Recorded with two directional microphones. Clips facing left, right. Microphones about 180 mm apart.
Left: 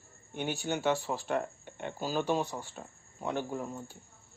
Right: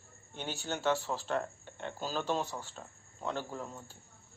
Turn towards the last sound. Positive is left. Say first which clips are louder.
# left 5 dB
turn(degrees=15)  # may be behind; listen again after turning